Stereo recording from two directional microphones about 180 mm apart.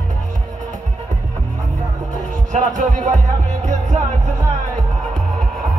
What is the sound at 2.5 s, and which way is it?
Speech, 45° right (ahead or behind).